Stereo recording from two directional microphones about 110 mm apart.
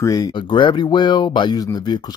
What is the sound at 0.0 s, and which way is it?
Speech, 35° left (ahead or behind).